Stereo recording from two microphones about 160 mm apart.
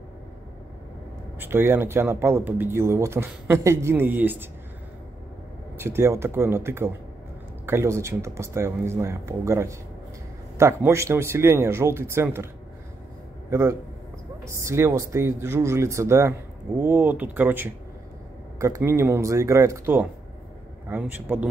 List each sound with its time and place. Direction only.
1.4 s speech: 15° right (ahead or behind)
5.8 s speech: 15° right (ahead or behind)
13.5 s a man's voice: 15° right (ahead or behind)